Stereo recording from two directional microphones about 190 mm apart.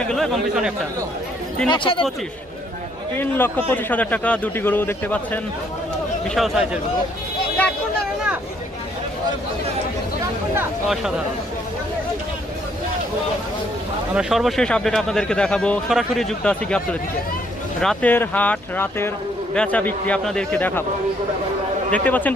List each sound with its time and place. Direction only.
0.1 s speech: centre (ahead or behind)
1.7 s speech: 25° left (ahead or behind)
3.2 s speech: 10° left (ahead or behind)
10.9 s speech: centre (ahead or behind)
14.1 s speech: centre (ahead or behind)
21.9 s speech: 10° left (ahead or behind)